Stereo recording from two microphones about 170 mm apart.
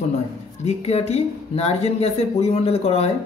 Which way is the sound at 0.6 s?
40° left (ahead or behind).